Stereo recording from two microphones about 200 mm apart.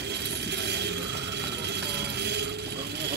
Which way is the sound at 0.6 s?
60° right (ahead or behind).